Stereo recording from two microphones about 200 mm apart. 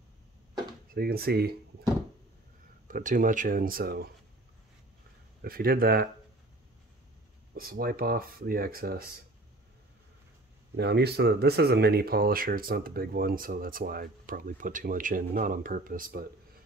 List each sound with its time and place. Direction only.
0.9 s speech: 50° right (ahead or behind)
2.9 s speech: 40° right (ahead or behind)
5.4 s speech: 50° right (ahead or behind)
7.5 s speech: 45° right (ahead or behind)
10.8 s speech: 55° right (ahead or behind)